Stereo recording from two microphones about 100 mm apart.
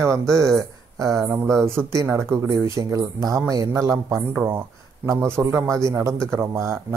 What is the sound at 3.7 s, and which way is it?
Speech, 30° right (ahead or behind).